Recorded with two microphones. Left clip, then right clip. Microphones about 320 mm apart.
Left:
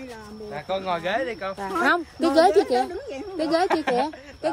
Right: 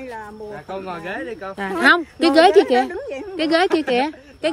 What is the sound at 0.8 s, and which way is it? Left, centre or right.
Speech, centre.